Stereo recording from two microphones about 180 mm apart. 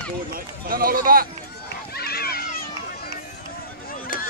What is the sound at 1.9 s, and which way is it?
Run, 60° left (ahead or behind).